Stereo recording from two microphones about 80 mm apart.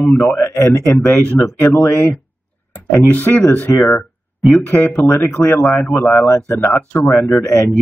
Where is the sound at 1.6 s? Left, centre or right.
Left.